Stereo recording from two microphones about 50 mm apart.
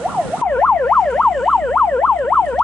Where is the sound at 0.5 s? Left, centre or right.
Left.